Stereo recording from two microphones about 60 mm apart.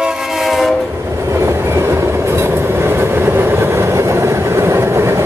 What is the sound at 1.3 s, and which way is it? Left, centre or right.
Train, right.